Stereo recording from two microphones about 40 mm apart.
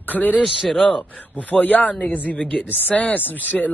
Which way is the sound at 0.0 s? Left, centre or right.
Left.